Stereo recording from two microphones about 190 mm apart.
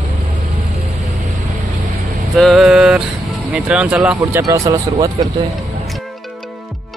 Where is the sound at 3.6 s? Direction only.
5° right (ahead or behind).